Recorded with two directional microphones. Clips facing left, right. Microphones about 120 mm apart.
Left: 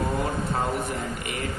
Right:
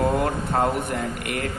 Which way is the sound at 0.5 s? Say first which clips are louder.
Right 4 dB; 60° right (ahead or behind).